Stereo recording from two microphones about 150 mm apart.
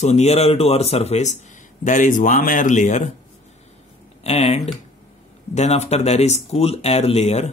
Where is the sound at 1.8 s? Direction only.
60° left (ahead or behind).